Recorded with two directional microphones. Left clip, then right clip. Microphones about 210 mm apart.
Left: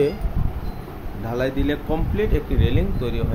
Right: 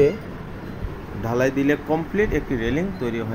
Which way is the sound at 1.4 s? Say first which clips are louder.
Right 3 dB; 10° right (ahead or behind).